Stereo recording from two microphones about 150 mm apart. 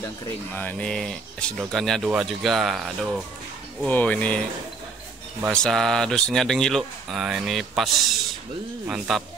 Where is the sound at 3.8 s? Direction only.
10° left (ahead or behind).